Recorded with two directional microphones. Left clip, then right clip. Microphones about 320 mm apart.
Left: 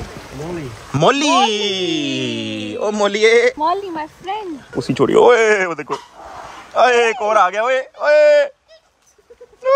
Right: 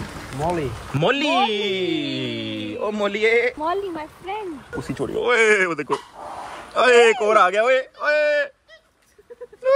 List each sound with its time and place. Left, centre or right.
0.9 s speech: left
5.2 s speech: centre